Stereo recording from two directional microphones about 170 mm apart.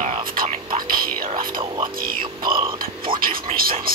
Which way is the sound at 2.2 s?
30° right (ahead or behind).